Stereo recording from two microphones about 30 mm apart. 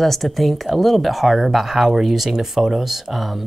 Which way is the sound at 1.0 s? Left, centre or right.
Centre.